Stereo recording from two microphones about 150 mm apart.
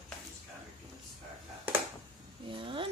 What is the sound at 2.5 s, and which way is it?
Speech, 35° right (ahead or behind).